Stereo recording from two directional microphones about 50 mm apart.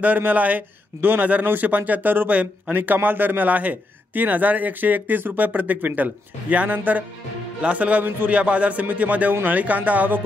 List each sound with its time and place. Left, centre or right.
0.0 s speech: right